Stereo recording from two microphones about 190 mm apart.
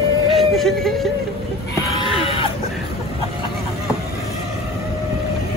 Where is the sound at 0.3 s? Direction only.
Centre (ahead or behind).